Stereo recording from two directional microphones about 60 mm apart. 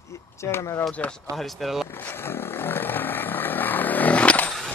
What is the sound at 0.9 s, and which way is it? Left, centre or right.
Speech, centre.